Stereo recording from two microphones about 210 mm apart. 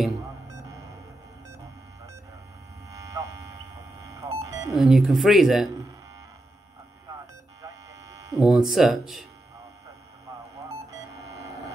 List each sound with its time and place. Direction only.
2.9 s electric shaver: 15° right (ahead or behind)
4.0 s buzzer: 15° right (ahead or behind)
4.7 s speech: centre (ahead or behind)
7.6 s electric shaver: 15° right (ahead or behind)
8.4 s speech: centre (ahead or behind)
10.9 s a sound: 15° right (ahead or behind)